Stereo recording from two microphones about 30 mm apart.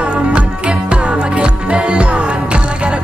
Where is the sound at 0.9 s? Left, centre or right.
Right.